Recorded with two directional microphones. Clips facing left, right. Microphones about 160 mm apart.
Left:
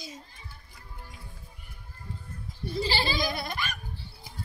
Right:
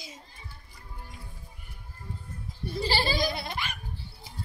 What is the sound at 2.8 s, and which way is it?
Goat, 45° right (ahead or behind).